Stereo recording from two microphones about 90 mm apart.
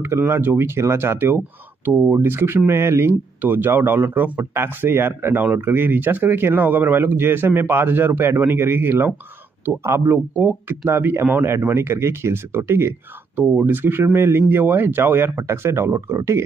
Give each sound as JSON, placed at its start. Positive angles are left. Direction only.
{"t": 0.0, "sound": "speech", "side_deg": -30}